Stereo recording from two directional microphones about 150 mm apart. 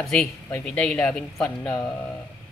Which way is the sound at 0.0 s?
Centre (ahead or behind).